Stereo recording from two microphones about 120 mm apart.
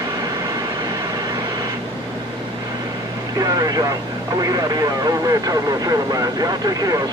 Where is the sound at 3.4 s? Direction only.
30° right (ahead or behind).